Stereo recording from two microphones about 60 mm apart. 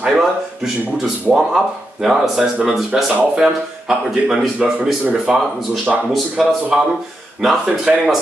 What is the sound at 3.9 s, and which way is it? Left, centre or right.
A man's voice, centre.